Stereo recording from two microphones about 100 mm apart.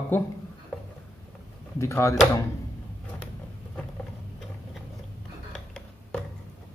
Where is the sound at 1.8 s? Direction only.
30° left (ahead or behind).